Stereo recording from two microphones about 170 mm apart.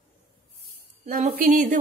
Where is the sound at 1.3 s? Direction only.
55° right (ahead or behind).